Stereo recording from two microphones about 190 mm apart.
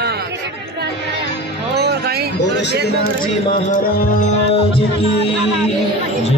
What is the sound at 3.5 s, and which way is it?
Music, 40° left (ahead or behind).